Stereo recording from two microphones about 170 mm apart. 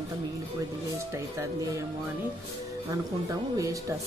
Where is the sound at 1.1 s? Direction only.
15° right (ahead or behind).